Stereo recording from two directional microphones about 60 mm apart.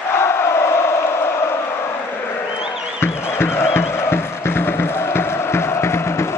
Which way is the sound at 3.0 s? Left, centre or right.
Left.